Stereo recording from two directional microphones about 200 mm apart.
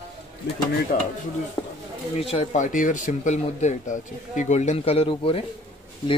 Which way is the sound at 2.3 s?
35° left (ahead or behind).